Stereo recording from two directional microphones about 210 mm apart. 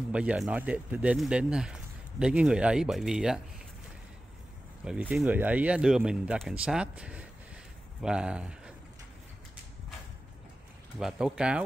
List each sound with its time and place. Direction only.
0.1 s speech: 5° right (ahead or behind)
4.8 s speech: 5° right (ahead or behind)
11.0 s speech: 5° right (ahead or behind)